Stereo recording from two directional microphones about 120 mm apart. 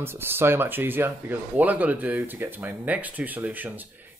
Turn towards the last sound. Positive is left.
turn(degrees=-15)  # may be behind; listen again after turning